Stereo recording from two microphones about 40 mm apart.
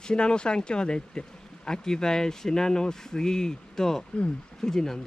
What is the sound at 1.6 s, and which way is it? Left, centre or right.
Speech, centre.